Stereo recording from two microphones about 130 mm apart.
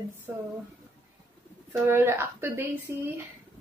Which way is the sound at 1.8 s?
20° right (ahead or behind).